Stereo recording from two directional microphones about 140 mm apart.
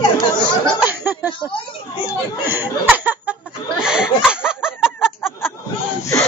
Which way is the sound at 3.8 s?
5° right (ahead or behind).